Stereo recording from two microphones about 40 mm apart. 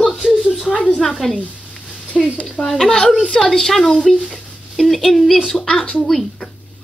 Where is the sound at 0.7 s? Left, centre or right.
Left.